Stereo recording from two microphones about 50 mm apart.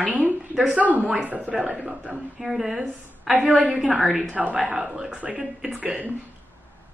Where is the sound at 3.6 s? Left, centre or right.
Right.